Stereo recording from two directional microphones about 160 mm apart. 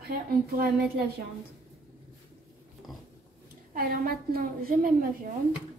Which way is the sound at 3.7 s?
65° right (ahead or behind).